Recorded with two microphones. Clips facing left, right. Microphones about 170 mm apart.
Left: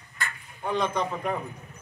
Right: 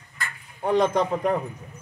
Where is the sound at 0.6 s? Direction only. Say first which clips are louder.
Right 6 dB; 40° right (ahead or behind).